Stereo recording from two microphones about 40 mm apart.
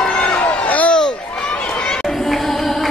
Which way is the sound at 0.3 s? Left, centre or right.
Left.